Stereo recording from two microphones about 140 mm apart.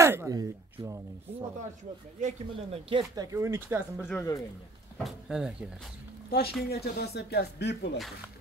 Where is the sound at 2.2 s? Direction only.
60° right (ahead or behind).